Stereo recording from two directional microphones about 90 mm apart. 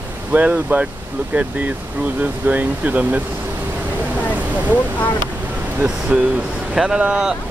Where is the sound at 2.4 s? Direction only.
20° right (ahead or behind).